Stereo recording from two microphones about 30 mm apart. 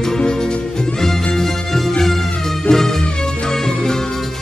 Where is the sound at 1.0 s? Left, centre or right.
Centre.